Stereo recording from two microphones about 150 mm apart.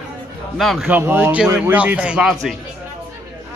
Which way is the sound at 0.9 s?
15° right (ahead or behind).